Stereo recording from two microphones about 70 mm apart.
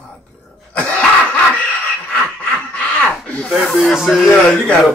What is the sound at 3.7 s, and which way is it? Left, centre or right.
Speech, centre.